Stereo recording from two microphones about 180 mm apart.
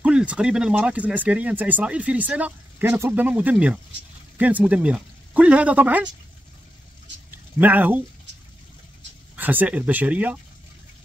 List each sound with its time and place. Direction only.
0.0 s speech: 5° right (ahead or behind)
7.2 s a sound: 10° right (ahead or behind)
9.4 s speech: 10° right (ahead or behind)